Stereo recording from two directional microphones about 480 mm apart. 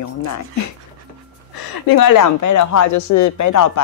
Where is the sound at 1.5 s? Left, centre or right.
Left.